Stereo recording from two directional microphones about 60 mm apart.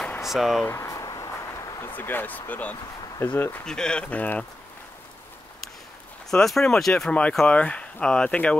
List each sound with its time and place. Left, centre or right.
0.2 s speech: centre
0.8 s a sound: left
2.0 s speech: left
3.6 s speech: centre
6.3 s speech: centre